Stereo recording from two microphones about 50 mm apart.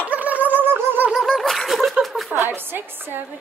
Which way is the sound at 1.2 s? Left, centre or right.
Centre.